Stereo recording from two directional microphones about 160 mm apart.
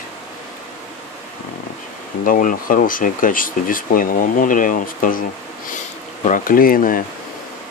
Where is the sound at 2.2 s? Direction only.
60° left (ahead or behind).